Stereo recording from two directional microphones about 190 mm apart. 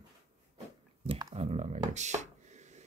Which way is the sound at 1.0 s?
30° right (ahead or behind).